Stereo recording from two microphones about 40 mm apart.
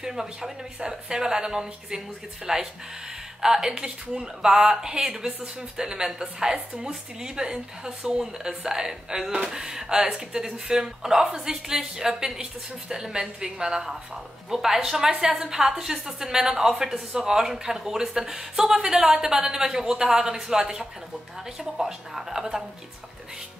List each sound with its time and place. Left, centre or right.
0.0 s a woman's voice: centre